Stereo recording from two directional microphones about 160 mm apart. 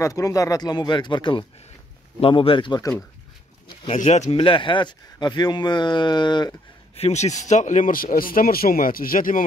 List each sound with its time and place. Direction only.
0.0 s a man's voice: 20° left (ahead or behind)
3.6 s a sound: 35° left (ahead or behind)
4.0 s a man's voice: 45° left (ahead or behind); by 6.5 s 25° left (ahead or behind)
7.0 s speech: 45° left (ahead or behind)